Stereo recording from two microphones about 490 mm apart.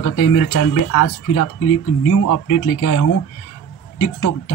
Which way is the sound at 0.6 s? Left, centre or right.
Left.